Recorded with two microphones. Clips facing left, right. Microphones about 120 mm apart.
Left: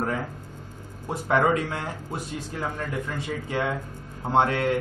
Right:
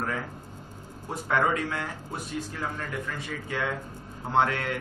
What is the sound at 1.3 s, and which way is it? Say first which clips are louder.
Speech: left 4 dB; 30° left (ahead or behind).